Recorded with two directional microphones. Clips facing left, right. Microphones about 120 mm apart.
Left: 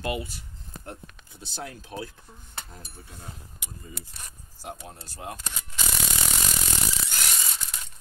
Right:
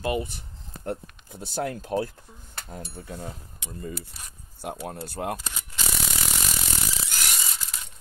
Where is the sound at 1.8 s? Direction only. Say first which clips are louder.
Right 9 dB; 45° right (ahead or behind).